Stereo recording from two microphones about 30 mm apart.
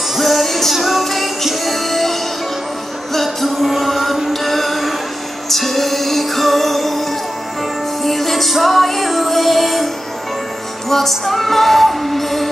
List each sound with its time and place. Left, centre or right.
0.1 s music: centre
10.9 s music: centre